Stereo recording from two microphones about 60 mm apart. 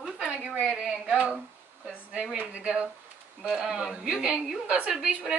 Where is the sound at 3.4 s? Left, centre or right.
Centre.